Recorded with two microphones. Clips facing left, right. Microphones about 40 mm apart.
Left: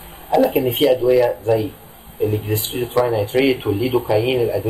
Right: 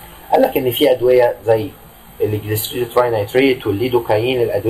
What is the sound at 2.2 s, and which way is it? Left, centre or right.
A man's voice, centre.